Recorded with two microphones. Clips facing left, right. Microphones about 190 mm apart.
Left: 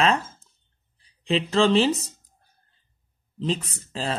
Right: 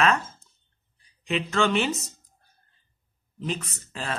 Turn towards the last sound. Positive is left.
turn(degrees=30)  # may be behind; listen again after turning